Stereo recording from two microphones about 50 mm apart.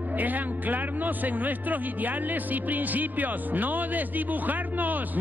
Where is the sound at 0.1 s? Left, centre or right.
Right.